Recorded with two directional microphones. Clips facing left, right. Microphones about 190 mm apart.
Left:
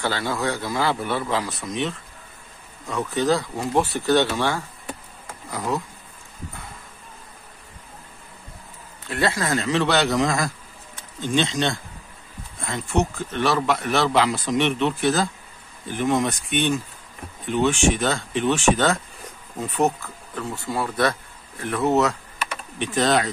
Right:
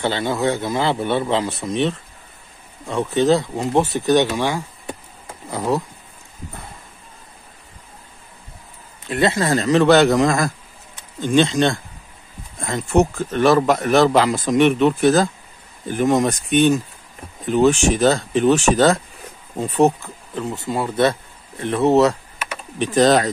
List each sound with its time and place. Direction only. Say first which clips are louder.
0.0 s speech: right 5 dB; 20° right (ahead or behind)
5.5 s speech: right 5 dB; 30° right (ahead or behind)
9.1 s speech: right 5 dB; 20° right (ahead or behind)
9.5 s speech: right 10 dB; 40° right (ahead or behind)